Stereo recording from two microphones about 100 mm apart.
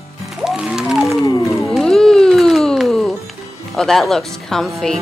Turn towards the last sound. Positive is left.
turn(degrees=0)  # may be behind; listen again after turning